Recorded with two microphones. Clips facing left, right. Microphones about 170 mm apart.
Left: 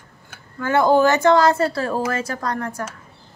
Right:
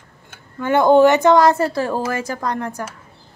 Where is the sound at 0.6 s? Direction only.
20° right (ahead or behind).